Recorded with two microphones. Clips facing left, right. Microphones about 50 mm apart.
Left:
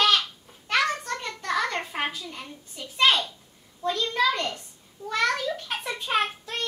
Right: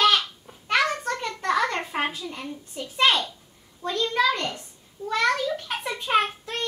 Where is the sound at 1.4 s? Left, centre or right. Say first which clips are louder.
Right 3 dB; centre.